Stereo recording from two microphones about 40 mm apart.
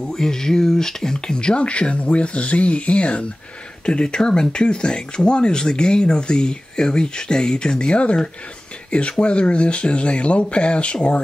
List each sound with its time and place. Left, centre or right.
0.1 s speech: centre; by 8.2 s left
9.2 s speech: left